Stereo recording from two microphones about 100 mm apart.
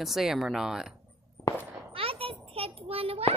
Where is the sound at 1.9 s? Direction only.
70° right (ahead or behind).